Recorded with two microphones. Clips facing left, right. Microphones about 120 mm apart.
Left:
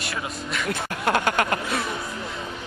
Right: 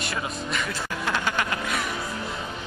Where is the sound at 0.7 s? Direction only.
55° left (ahead or behind).